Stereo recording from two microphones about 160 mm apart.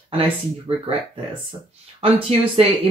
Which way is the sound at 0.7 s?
35° right (ahead or behind).